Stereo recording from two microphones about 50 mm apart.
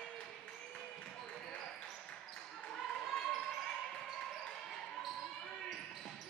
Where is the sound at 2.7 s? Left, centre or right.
Centre.